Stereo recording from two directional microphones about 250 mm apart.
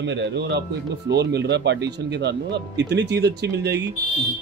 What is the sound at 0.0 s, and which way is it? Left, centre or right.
Speech, right.